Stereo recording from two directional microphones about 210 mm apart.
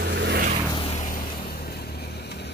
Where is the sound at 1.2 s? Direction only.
20° left (ahead or behind).